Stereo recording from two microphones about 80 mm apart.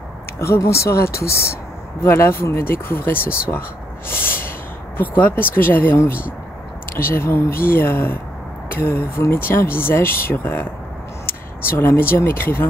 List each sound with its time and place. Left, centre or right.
0.4 s speech: left
4.1 s snort: left
4.9 s speech: left